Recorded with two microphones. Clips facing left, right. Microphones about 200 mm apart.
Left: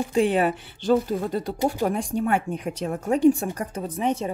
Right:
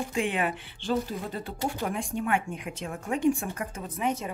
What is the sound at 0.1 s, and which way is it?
Speech, 35° left (ahead or behind).